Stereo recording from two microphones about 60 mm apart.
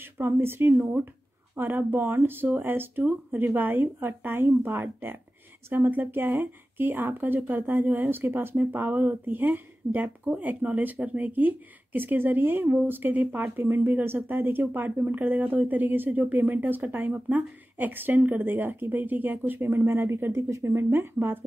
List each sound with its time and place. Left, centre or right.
0.0 s speech: right